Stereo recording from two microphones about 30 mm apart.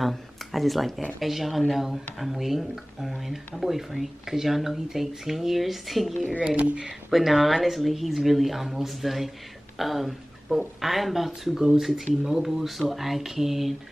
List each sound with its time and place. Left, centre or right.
0.0 s speech: centre
6.5 s speech: right
7.1 s speech: centre